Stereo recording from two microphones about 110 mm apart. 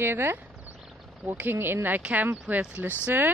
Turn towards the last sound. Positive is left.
turn(degrees=-20)  # may be behind; listen again after turning